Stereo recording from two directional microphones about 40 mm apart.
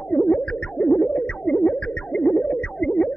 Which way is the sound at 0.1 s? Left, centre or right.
Left.